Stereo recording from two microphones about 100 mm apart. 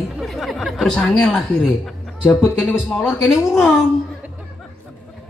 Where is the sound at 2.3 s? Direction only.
25° left (ahead or behind).